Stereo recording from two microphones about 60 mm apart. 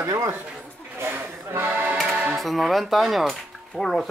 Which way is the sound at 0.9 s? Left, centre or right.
Right.